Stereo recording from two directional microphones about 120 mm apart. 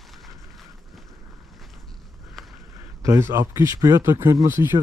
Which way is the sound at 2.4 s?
Centre (ahead or behind).